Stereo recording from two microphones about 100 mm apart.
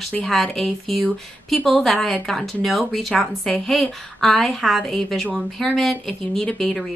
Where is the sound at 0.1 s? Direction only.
5° left (ahead or behind).